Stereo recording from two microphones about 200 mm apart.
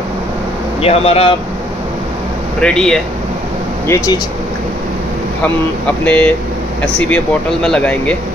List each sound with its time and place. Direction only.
0.8 s speech: 30° left (ahead or behind)
2.6 s speech: 5° left (ahead or behind)
3.8 s speech: 15° left (ahead or behind)
6.0 s speech: 5° left (ahead or behind)
7.6 s speech: 5° left (ahead or behind)